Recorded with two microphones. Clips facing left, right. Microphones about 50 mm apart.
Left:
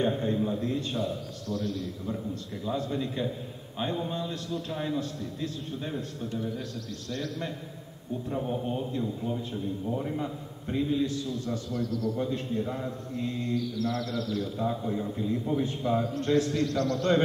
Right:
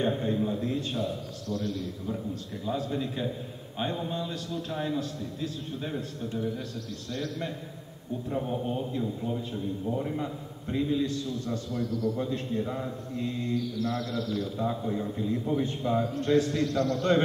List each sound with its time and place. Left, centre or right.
0.0 s speech: centre
12.3 s speech: centre